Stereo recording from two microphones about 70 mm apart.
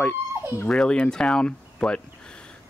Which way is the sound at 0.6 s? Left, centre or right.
Centre.